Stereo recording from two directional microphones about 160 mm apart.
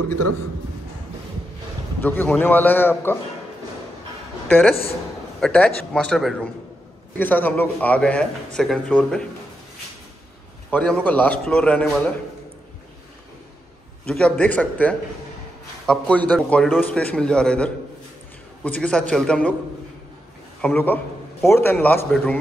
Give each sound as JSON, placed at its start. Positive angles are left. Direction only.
{"t": 2.0, "sound": "a man's voice", "side_deg": 10}
{"t": 4.5, "sound": "a woman's voice", "side_deg": 5}
{"t": 10.7, "sound": "a man's voice", "side_deg": 5}
{"t": 14.0, "sound": "a man's voice", "side_deg": 5}
{"t": 20.6, "sound": "a man's voice", "side_deg": 10}